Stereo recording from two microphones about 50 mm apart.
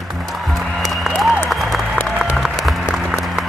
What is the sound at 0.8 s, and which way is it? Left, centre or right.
Applause, centre.